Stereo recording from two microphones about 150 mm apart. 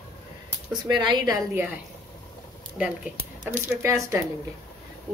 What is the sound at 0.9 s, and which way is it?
Speech, 30° right (ahead or behind).